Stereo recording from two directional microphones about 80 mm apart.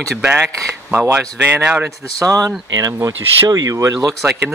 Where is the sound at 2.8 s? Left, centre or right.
Right.